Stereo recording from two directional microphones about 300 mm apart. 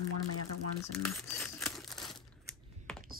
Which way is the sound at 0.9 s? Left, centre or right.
Centre.